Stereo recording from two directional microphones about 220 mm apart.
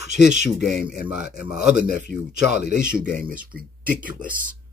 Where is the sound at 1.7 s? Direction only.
50° left (ahead or behind).